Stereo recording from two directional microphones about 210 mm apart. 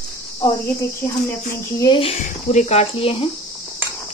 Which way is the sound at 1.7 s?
20° left (ahead or behind).